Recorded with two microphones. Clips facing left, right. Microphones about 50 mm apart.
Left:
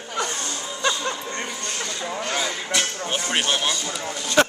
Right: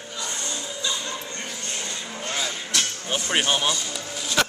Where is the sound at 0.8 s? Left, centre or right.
Left.